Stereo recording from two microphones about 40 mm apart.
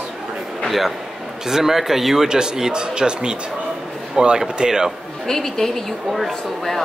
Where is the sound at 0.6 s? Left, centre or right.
Centre.